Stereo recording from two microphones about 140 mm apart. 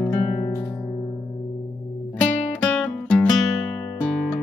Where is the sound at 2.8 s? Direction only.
15° left (ahead or behind).